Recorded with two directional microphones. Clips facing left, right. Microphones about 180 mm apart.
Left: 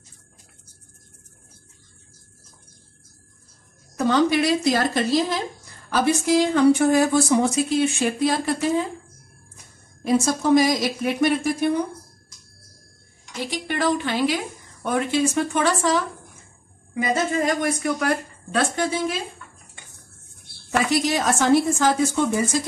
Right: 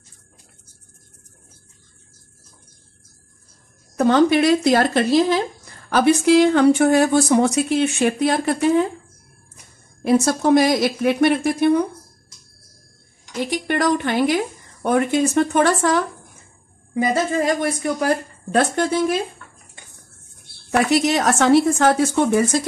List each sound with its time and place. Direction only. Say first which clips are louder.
3.9 s speech: right 4 dB; 55° right (ahead or behind)
10.0 s speech: right 3 dB; 65° right (ahead or behind)
13.5 s speech: right 3 dB; 50° right (ahead or behind)
16.9 s a woman's voice: right 3 dB; 35° right (ahead or behind)
18.5 s speech: right 4 dB; 45° right (ahead or behind)
20.7 s speech: right 4 dB; 65° right (ahead or behind)